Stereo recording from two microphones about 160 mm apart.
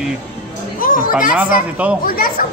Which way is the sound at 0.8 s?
60° left (ahead or behind).